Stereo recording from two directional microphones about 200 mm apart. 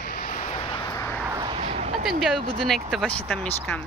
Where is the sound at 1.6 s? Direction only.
35° right (ahead or behind).